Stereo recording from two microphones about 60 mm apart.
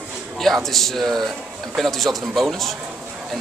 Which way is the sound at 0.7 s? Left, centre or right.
Centre.